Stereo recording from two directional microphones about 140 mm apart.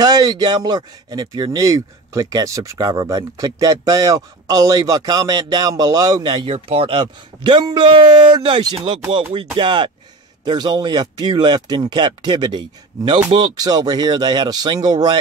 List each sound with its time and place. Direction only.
0.0 s speech: 30° right (ahead or behind)